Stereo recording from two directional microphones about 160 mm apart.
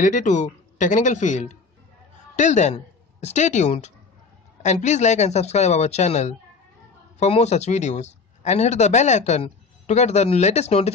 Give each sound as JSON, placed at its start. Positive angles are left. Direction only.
{"t": 0.0, "sound": "speech", "side_deg": 50}